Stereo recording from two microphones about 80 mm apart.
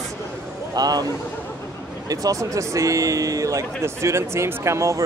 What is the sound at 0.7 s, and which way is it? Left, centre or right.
Speech, right.